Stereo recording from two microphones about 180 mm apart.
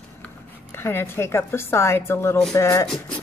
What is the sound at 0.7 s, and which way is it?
A woman's voice, 10° left (ahead or behind).